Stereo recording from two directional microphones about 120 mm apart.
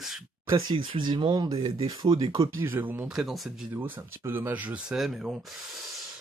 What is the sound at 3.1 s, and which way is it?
Speech, centre (ahead or behind).